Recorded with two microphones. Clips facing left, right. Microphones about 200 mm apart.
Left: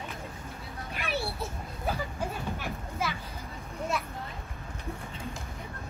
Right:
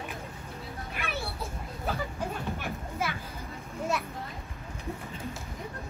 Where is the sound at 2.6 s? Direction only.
50° right (ahead or behind).